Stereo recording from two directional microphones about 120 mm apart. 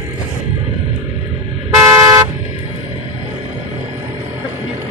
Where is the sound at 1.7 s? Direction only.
25° right (ahead or behind).